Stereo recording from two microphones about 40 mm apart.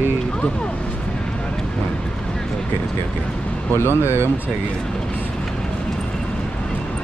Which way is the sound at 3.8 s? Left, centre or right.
Left.